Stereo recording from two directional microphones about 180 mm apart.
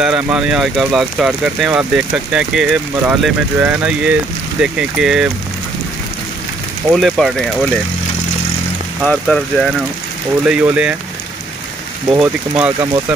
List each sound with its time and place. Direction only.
0.0 s speech: 5° right (ahead or behind)
6.9 s speech: centre (ahead or behind)
9.0 s speech: 5° left (ahead or behind)
12.1 s speech: 5° right (ahead or behind)